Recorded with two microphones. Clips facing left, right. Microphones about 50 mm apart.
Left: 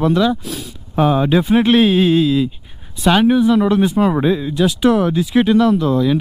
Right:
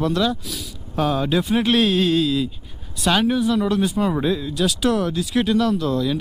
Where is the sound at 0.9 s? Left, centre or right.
Left.